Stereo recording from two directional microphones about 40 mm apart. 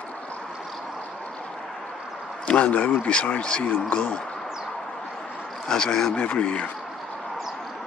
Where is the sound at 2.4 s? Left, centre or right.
Left.